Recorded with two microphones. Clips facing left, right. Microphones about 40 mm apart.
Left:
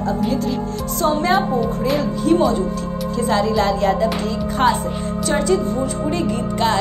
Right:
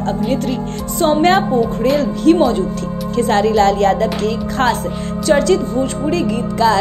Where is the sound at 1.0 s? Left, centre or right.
Right.